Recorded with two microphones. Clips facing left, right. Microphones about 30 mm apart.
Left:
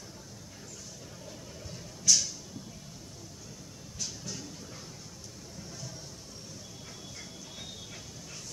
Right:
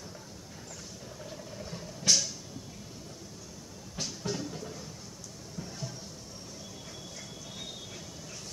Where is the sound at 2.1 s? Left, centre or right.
Right.